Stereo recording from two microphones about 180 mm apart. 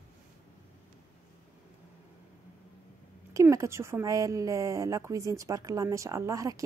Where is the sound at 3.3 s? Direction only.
15° right (ahead or behind).